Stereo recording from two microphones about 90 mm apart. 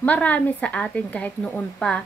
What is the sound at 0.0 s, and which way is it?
A woman's voice, 15° left (ahead or behind).